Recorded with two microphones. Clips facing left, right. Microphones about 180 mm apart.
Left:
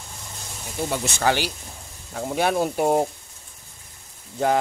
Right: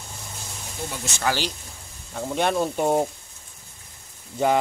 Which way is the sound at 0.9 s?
60° left (ahead or behind).